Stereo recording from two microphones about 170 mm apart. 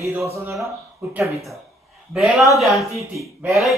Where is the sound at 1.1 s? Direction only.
15° right (ahead or behind).